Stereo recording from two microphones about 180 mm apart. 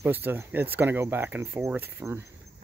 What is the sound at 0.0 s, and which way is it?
Speech, 10° right (ahead or behind).